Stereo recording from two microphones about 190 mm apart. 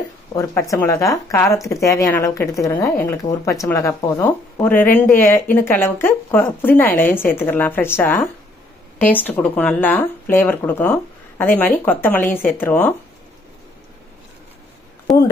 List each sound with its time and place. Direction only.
0.4 s speech: 15° left (ahead or behind)
15.1 s speech: centre (ahead or behind)